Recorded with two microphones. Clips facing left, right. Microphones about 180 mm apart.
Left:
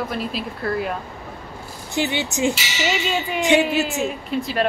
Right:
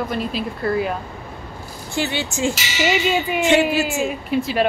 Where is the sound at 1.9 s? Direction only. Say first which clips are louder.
Left 1 dB; 20° left (ahead or behind).